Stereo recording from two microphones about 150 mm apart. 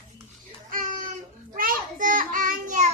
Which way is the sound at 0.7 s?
70° right (ahead or behind).